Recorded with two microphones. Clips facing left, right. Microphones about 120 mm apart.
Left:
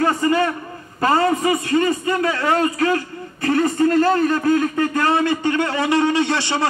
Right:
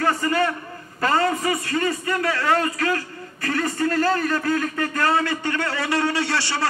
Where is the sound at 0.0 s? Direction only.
20° left (ahead or behind).